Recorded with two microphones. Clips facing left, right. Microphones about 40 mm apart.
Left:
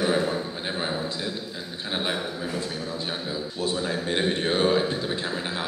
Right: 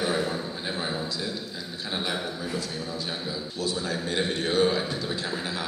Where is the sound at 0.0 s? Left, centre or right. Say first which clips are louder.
Left 3 dB; left.